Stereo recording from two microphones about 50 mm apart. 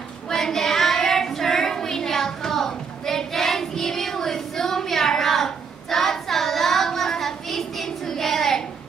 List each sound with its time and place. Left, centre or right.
0.3 s child singing: centre